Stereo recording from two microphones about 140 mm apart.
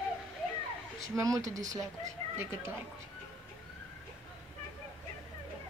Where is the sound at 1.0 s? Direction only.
25° right (ahead or behind).